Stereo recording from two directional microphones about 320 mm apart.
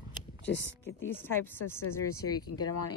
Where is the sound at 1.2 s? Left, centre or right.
Centre.